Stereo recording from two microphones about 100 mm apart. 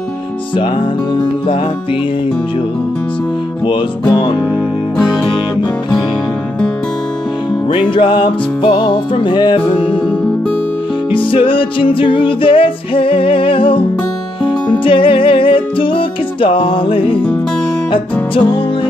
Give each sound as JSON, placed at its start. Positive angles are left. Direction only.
{"t": 7.7, "sound": "music", "side_deg": 60}
{"t": 11.1, "sound": "music", "side_deg": 60}